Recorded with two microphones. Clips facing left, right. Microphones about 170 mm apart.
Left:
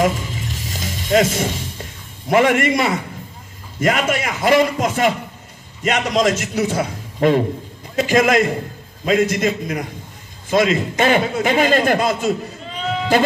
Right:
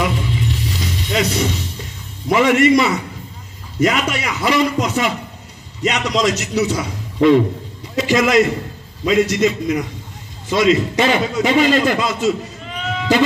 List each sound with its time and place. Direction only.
0.0 s music: 45° left (ahead or behind)
2.3 s a man's voice: 50° left (ahead or behind)